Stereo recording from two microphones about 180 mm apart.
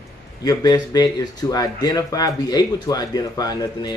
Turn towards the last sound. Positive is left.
turn(degrees=20)  # may be behind; listen again after turning